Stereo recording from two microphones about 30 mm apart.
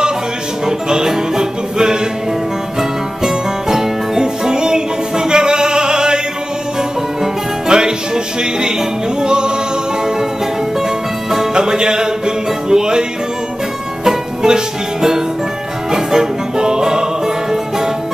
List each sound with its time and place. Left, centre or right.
0.7 s music: right
3.6 s music: centre
7.6 s music: right
11.5 s music: right
14.0 s music: right